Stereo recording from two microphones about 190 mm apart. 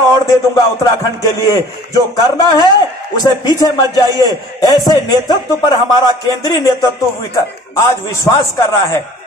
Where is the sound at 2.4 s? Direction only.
20° left (ahead or behind).